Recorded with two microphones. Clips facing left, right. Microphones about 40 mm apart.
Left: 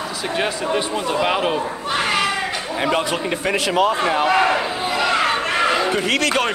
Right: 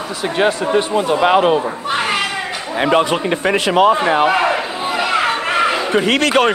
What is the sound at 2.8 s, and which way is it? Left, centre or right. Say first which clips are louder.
A man's voice: right 6 dB; right.